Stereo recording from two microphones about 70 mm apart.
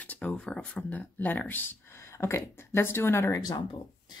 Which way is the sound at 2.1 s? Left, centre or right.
Left.